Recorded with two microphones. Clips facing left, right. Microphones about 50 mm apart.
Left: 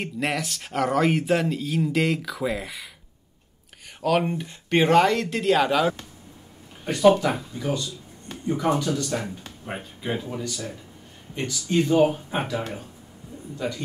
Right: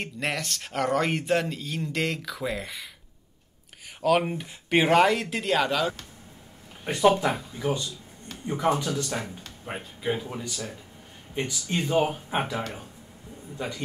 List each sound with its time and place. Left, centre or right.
0.0 s speech: centre
4.0 s speech: centre
6.9 s speech: centre
10.4 s speech: centre